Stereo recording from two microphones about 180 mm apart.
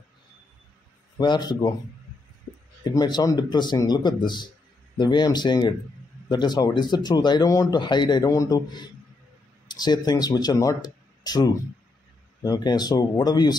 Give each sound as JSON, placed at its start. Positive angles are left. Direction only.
{"t": 1.1, "sound": "speech", "side_deg": 25}
{"t": 2.8, "sound": "speech", "side_deg": 20}